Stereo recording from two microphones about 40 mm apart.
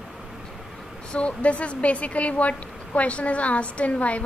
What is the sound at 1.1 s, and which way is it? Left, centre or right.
A woman's voice, left.